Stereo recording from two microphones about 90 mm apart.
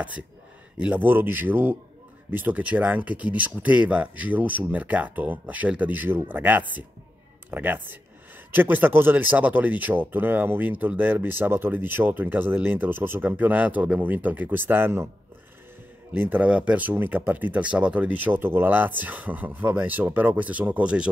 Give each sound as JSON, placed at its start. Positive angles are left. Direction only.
{"t": 0.7, "sound": "speech", "side_deg": -20}
{"t": 16.2, "sound": "speech", "side_deg": -20}